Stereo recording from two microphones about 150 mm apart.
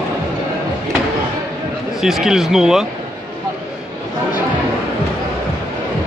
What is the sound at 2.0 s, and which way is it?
Speech, 5° right (ahead or behind).